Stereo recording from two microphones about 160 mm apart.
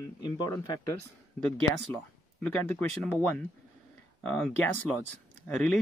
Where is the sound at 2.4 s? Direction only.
10° left (ahead or behind).